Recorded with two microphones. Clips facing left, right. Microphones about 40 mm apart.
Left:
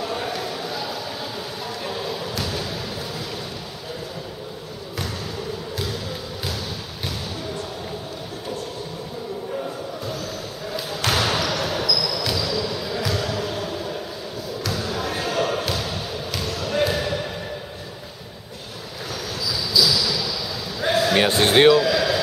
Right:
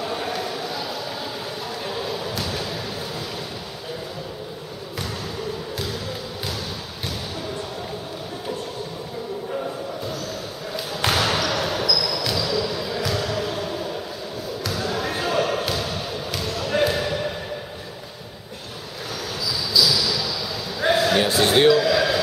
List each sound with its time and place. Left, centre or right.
0.0 s a sound: centre
1.9 s basketball bounce: centre
11.1 s basketball bounce: centre
19.4 s basketball bounce: centre
20.8 s a sound: centre
21.2 s music: left
21.7 s basketball bounce: centre